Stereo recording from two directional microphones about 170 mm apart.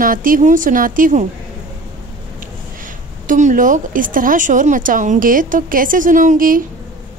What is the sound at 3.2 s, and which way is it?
A woman's voice, 50° right (ahead or behind).